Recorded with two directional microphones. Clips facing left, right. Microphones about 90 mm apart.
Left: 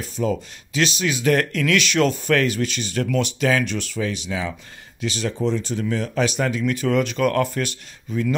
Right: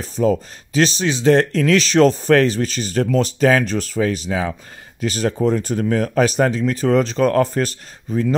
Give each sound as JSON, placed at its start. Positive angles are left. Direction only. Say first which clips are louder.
{"t": 0.0, "sound": "speech", "louder": "right 6 dB", "side_deg": -40}